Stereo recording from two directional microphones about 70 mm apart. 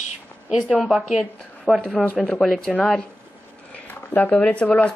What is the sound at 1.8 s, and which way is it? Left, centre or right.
Speech, centre.